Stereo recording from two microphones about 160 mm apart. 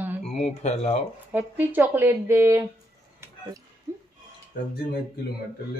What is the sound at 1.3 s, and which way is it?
Speech, 10° right (ahead or behind).